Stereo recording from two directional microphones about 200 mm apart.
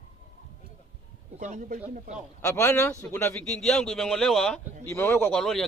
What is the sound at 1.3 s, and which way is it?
Speech, 35° right (ahead or behind).